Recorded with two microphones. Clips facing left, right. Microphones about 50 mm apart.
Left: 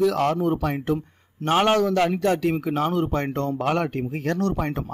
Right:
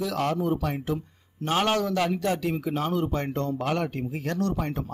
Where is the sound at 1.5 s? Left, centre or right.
Left.